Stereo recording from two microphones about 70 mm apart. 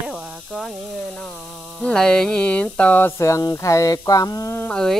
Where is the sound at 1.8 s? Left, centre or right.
Centre.